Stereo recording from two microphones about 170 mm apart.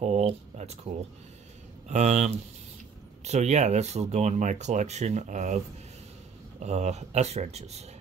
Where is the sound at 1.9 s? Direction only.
45° right (ahead or behind).